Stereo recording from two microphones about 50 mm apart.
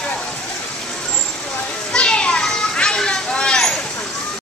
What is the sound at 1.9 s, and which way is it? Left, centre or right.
Children playing, centre.